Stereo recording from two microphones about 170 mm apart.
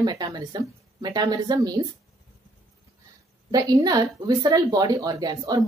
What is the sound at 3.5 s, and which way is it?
Speech, 20° right (ahead or behind).